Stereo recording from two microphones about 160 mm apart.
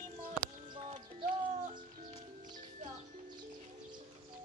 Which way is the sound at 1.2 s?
60° right (ahead or behind).